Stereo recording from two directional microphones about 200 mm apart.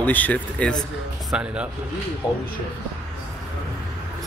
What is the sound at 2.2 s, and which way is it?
Speech, 25° left (ahead or behind).